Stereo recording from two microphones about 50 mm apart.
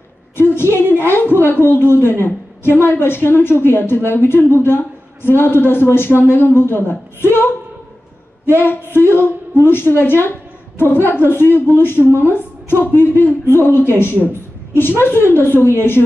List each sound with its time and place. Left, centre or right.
0.4 s a woman's voice: left
8.5 s a woman's voice: left